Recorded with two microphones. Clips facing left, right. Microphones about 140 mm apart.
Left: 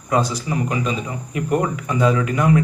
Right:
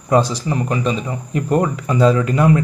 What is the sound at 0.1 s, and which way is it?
Speech, 35° right (ahead or behind).